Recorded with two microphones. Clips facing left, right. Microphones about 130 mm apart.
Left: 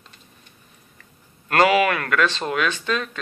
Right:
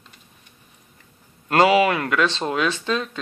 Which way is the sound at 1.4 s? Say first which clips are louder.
Right 1 dB; 20° right (ahead or behind).